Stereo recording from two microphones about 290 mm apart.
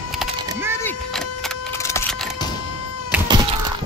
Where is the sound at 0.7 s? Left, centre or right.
Centre.